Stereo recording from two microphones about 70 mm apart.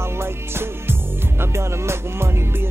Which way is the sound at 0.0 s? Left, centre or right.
Right.